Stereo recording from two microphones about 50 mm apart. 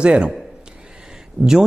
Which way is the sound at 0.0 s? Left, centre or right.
Right.